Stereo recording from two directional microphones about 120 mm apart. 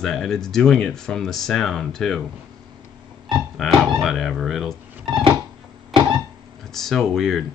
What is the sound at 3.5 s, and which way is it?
Speech, centre (ahead or behind).